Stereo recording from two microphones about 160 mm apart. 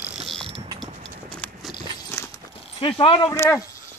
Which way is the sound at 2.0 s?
20° left (ahead or behind).